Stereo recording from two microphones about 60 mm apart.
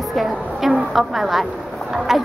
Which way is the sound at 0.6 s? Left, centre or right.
Centre.